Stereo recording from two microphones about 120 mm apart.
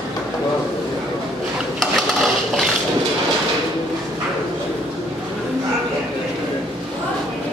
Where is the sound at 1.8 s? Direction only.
Centre (ahead or behind).